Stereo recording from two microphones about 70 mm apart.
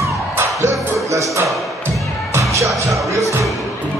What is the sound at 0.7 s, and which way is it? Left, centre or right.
Music, right.